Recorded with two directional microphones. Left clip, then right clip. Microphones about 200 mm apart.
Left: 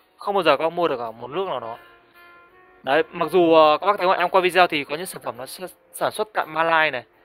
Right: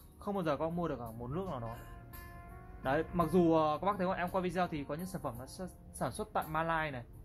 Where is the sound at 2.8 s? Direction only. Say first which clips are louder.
Left 12 dB; 55° left (ahead or behind).